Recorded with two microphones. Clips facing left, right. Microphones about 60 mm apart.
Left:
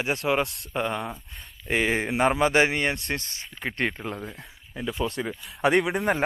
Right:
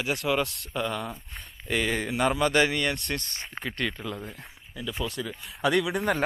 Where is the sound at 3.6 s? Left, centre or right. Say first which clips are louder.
Left 4 dB; left.